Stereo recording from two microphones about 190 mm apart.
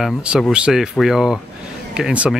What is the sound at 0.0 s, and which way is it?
Speech, 5° right (ahead or behind).